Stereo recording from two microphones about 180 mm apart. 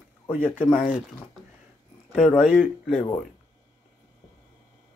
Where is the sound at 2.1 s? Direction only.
5° left (ahead or behind).